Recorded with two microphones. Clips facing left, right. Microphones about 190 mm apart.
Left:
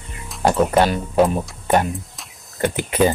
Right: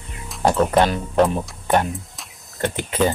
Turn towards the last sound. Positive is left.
turn(degrees=10)  # may be behind; listen again after turning